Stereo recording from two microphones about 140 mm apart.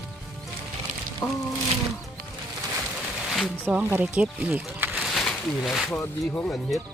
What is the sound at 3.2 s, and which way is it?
Speech, 5° right (ahead or behind).